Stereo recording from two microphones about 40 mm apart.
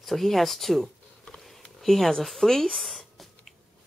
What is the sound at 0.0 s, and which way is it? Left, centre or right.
Speech, centre.